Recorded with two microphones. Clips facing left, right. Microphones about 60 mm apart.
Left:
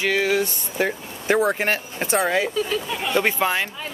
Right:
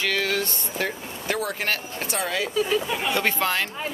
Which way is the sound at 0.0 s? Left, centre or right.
Centre.